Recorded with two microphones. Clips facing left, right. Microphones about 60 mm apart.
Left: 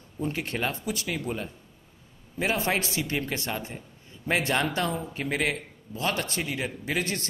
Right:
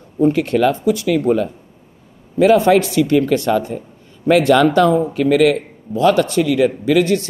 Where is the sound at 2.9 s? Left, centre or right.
Right.